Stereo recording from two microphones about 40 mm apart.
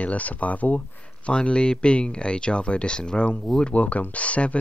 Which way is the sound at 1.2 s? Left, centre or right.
Left.